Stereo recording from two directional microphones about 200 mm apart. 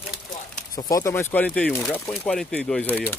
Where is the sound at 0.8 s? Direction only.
15° left (ahead or behind).